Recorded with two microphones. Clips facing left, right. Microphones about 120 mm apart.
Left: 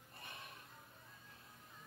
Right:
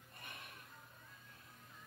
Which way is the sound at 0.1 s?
30° left (ahead or behind).